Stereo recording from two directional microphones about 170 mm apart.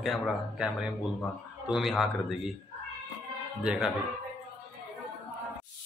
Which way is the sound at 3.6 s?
5° right (ahead or behind).